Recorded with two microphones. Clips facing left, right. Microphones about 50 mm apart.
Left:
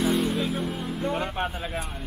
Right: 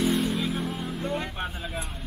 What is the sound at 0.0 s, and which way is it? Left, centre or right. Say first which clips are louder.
Music: left 1 dB; centre.